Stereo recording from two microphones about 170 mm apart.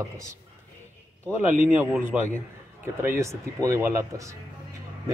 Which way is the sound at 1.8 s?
10° right (ahead or behind).